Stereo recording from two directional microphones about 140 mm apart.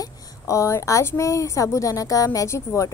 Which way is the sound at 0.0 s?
20° left (ahead or behind).